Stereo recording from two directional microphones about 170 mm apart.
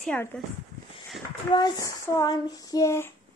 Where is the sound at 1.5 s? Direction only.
20° left (ahead or behind).